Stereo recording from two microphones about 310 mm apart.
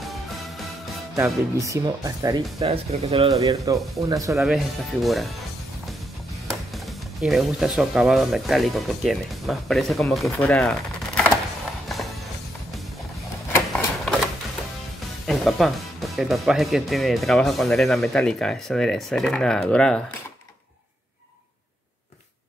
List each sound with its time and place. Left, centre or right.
1.1 s speech: centre
7.2 s speech: centre
13.5 s a sound: centre
15.2 s speech: centre